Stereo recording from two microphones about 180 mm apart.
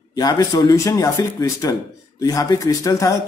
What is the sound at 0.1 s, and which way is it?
A man's voice, 20° left (ahead or behind).